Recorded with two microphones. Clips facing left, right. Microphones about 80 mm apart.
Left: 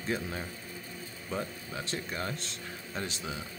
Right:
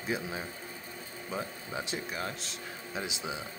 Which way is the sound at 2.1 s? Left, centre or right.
Centre.